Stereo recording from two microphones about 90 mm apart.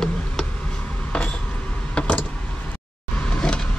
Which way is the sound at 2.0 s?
15° left (ahead or behind).